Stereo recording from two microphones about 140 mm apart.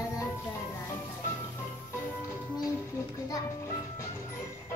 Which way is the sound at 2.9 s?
20° left (ahead or behind).